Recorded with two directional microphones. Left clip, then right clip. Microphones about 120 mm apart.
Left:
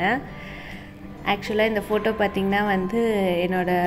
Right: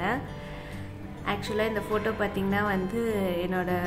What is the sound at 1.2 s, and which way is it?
A woman's voice, 30° left (ahead or behind).